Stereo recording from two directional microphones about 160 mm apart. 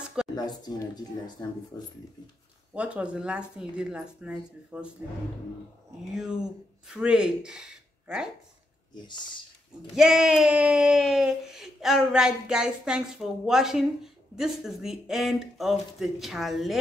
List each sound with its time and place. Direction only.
0.4 s speech: 25° left (ahead or behind)
2.7 s speech: 5° right (ahead or behind)
6.9 s speech: 5° right (ahead or behind)
8.9 s speech: 30° left (ahead or behind)
9.9 s speech: 5° right (ahead or behind)